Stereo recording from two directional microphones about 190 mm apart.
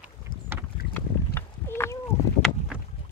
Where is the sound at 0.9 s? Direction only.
15° left (ahead or behind).